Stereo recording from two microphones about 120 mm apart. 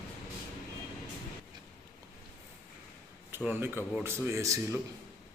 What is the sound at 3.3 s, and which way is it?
A man's voice, 20° right (ahead or behind).